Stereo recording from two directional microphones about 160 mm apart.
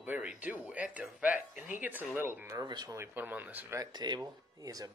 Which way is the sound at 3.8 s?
25° right (ahead or behind).